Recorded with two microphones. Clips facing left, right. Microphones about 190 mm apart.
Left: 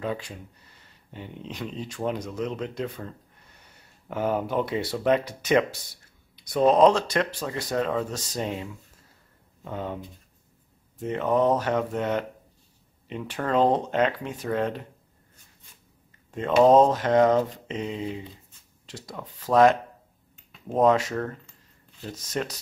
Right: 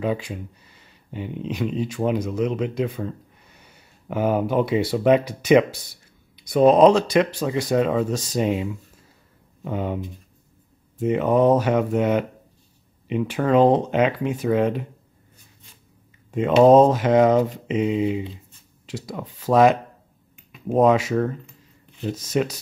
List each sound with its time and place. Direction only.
0.0 s speech: 10° right (ahead or behind)
4.1 s speech: 15° right (ahead or behind)
9.7 s speech: 15° right (ahead or behind)
16.3 s a sound: 10° right (ahead or behind)
16.6 s speech: 10° right (ahead or behind)